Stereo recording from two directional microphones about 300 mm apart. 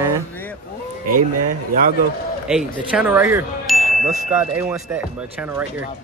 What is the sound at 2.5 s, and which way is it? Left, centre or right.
Speech, centre.